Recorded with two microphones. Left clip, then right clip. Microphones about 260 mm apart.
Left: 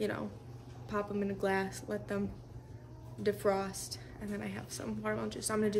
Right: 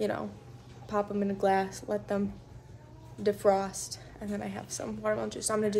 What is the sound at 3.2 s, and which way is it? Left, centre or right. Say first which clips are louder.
Speech: right 6 dB; centre.